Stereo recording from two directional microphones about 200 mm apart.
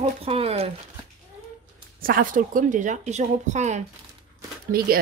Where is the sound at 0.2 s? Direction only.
30° right (ahead or behind).